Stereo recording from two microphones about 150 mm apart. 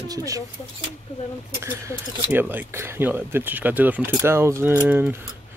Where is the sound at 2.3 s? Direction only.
15° right (ahead or behind).